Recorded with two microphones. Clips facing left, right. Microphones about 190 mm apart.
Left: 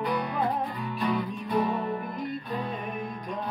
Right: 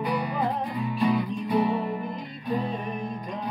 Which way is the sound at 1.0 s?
15° right (ahead or behind).